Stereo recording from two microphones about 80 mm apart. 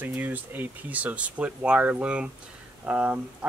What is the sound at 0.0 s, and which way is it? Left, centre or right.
Speech, right.